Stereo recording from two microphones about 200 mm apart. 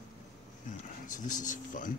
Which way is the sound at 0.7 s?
40° left (ahead or behind).